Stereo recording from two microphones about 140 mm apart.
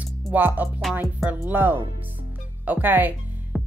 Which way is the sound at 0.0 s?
10° right (ahead or behind).